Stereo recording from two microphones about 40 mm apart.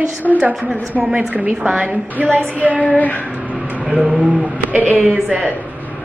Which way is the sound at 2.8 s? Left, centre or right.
Left.